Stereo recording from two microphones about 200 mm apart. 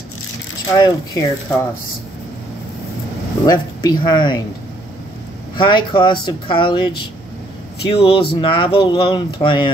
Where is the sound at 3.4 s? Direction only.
20° left (ahead or behind).